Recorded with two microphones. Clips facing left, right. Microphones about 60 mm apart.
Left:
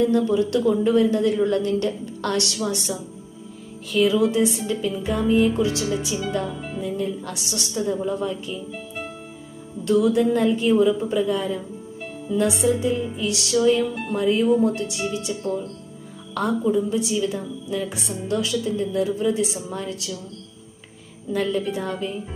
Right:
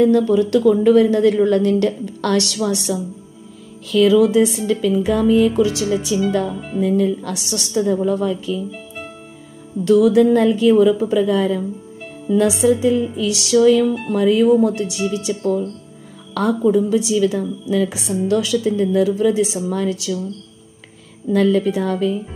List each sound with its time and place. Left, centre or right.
0.0 s a woman's voice: right
3.9 s a woman's voice: right
6.8 s a woman's voice: right
9.8 s a woman's voice: right
21.3 s a woman's voice: right